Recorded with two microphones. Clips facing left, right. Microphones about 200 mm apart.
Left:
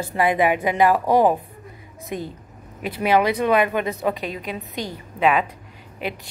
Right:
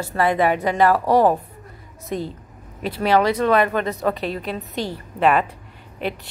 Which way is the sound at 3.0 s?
15° left (ahead or behind).